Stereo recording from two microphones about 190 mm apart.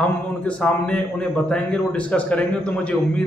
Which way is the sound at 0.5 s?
5° left (ahead or behind).